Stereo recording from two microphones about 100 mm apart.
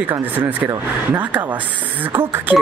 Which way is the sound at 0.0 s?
20° right (ahead or behind).